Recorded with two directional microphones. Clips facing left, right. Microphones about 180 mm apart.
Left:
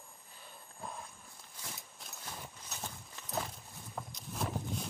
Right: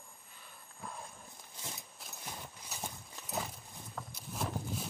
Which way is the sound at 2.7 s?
10° right (ahead or behind).